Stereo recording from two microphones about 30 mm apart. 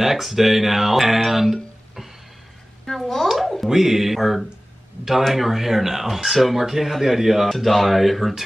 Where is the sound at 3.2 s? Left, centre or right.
Centre.